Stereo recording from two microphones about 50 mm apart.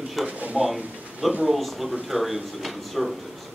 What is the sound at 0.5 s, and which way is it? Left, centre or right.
Speech, centre.